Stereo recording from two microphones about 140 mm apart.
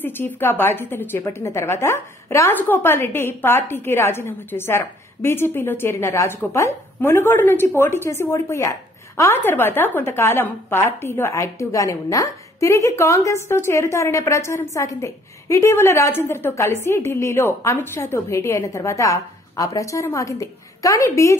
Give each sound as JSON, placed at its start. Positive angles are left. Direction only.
{"t": 0.0, "sound": "a woman's voice", "side_deg": 15}